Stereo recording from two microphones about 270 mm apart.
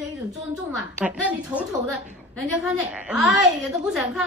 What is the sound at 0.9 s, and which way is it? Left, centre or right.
A woman's voice, centre.